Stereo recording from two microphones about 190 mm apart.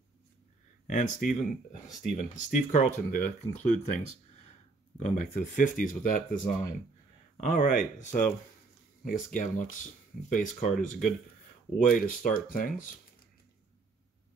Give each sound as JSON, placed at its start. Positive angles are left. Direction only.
{"t": 0.8, "sound": "speech", "side_deg": 40}